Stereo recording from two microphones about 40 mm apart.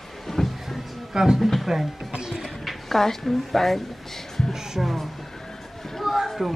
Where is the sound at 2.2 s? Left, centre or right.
Centre.